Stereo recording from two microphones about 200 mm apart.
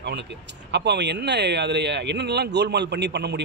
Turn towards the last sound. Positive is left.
turn(degrees=-55)  # may be behind; listen again after turning